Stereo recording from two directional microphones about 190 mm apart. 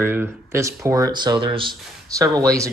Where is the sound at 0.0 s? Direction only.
10° right (ahead or behind).